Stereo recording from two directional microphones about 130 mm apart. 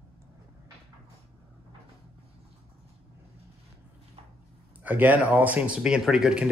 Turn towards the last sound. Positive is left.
turn(degrees=-5)  # may be behind; listen again after turning